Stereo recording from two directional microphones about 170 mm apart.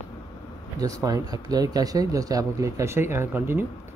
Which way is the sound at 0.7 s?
20° right (ahead or behind).